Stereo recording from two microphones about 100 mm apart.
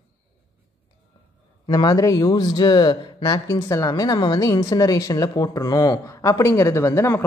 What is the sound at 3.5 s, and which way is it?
Speech, 35° left (ahead or behind).